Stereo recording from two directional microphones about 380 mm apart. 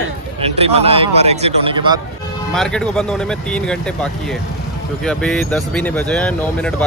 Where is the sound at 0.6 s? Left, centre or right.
Centre.